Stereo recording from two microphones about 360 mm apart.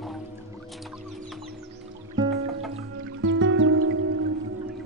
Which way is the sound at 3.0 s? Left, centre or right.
Right.